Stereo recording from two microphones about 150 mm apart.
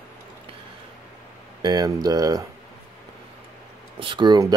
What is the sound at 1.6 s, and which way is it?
Speech, 25° right (ahead or behind).